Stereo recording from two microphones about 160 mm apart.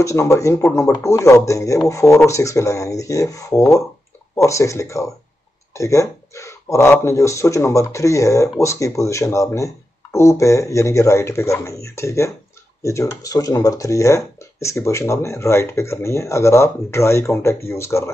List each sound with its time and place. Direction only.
0.0 s speech: 20° left (ahead or behind)